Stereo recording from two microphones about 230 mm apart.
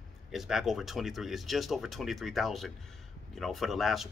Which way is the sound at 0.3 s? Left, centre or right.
Centre.